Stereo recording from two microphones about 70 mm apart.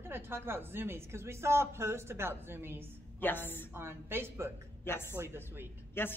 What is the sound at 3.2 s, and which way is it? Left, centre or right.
Speech, left.